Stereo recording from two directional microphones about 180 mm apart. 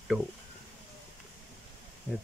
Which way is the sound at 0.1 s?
Centre (ahead or behind).